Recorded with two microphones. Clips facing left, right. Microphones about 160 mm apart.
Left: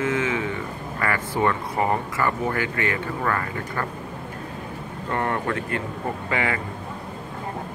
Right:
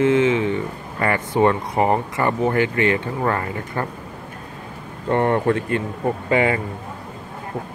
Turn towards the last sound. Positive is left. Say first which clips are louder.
# right 7 dB
turn(degrees=-25)  # may be behind; listen again after turning